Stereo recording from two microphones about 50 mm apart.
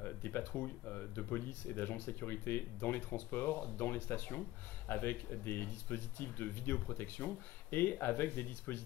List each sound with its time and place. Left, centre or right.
0.0 s speech: left